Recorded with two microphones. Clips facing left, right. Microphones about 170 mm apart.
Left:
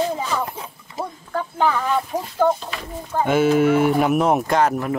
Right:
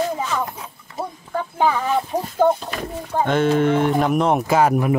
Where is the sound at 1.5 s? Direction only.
15° right (ahead or behind).